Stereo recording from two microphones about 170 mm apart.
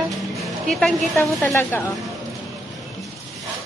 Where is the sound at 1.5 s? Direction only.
15° left (ahead or behind).